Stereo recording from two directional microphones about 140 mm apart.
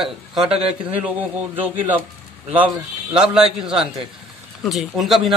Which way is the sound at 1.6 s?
15° right (ahead or behind).